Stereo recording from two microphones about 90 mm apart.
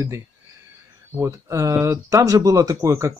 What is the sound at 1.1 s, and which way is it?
Speech, 35° right (ahead or behind).